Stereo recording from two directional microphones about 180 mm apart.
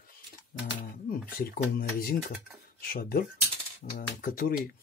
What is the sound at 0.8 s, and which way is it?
Speech, 55° left (ahead or behind).